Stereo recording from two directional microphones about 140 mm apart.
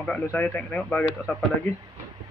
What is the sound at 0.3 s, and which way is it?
Speech, 10° left (ahead or behind).